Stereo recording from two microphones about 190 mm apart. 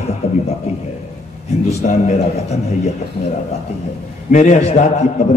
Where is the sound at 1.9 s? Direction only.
35° left (ahead or behind).